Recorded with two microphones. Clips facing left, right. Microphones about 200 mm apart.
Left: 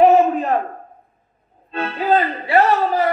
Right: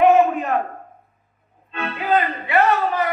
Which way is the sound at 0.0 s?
35° left (ahead or behind).